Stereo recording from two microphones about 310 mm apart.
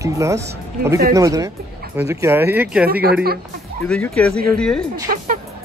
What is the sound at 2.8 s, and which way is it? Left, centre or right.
Speech, right.